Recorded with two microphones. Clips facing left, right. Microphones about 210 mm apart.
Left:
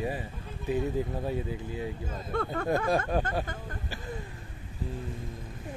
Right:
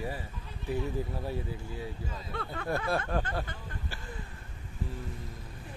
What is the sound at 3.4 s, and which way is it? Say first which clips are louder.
Vehicle: left 4 dB; 45° left (ahead or behind).